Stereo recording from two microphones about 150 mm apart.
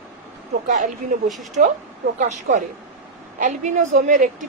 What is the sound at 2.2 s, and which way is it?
A woman's voice, 55° right (ahead or behind).